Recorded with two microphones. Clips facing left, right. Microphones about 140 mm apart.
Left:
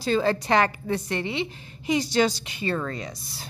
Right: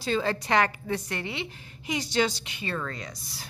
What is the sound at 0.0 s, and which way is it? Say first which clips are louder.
A woman's voice: left 4 dB; 35° left (ahead or behind).